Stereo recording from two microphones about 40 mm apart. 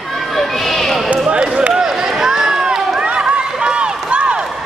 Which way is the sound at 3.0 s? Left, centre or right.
Right.